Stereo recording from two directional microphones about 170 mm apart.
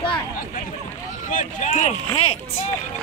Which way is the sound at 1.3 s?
50° left (ahead or behind).